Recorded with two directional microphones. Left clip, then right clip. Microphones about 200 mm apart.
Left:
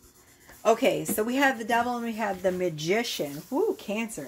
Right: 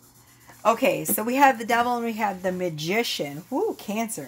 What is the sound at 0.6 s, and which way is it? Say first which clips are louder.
A woman's voice: right 2 dB; 30° right (ahead or behind).